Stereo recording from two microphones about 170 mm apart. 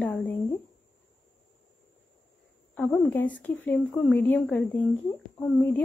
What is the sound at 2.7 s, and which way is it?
Speech, 5° left (ahead or behind).